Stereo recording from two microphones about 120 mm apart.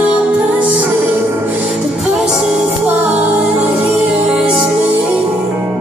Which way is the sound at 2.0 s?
5° right (ahead or behind).